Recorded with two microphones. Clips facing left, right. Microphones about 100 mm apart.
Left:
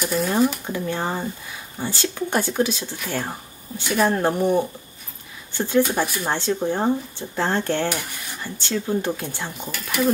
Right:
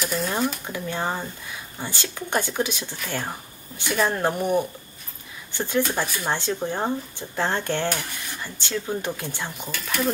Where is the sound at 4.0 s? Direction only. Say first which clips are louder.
Left 3 dB; 15° left (ahead or behind).